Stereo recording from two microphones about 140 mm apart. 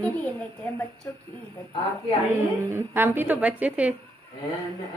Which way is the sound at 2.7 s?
15° right (ahead or behind).